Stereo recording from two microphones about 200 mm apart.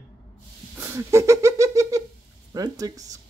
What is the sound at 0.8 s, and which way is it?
Giggle, 15° right (ahead or behind).